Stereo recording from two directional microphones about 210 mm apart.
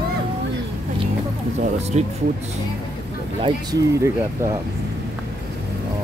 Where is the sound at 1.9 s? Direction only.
30° right (ahead or behind).